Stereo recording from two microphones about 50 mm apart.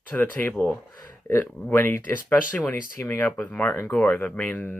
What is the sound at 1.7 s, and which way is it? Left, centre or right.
Speech, left.